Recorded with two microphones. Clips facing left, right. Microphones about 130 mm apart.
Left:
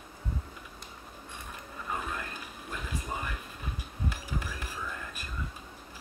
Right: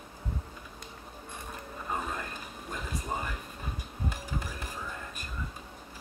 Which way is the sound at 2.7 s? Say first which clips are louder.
Right 2 dB; 35° right (ahead or behind).